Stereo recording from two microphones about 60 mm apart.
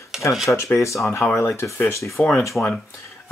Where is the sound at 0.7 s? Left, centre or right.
Left.